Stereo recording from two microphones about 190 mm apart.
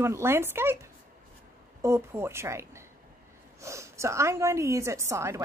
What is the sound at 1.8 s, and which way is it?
A woman's voice, 15° right (ahead or behind).